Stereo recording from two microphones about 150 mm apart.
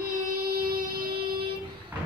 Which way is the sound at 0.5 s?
80° right.